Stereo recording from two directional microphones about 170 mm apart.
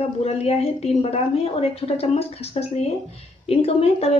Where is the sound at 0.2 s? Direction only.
40° left (ahead or behind).